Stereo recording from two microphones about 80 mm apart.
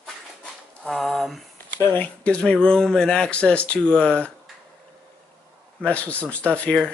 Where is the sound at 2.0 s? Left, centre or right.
Centre.